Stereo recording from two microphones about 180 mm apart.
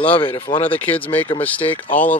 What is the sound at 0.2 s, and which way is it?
Speech, 25° left (ahead or behind).